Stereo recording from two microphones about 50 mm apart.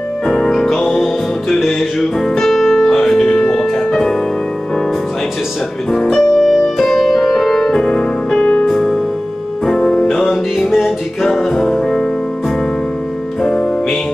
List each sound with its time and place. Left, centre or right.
0.3 s music: centre
6.0 s music: centre; by 8.6 s left
8.6 s music: centre
13.4 s music: centre